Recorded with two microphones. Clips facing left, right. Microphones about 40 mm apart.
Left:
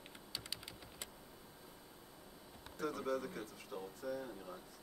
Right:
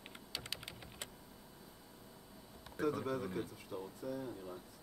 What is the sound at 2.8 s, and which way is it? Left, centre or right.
Speech, centre.